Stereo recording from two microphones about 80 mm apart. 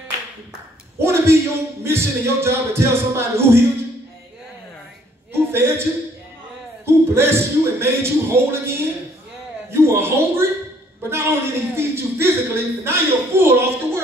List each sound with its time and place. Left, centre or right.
0.9 s speech: right
5.3 s a sound: right
6.9 s a man's voice: right